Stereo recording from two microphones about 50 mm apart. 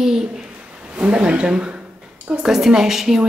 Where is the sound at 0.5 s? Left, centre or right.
Right.